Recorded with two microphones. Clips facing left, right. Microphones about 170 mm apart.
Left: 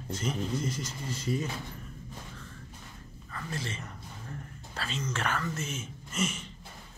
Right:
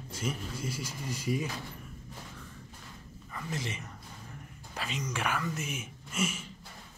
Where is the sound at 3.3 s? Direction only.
15° right (ahead or behind).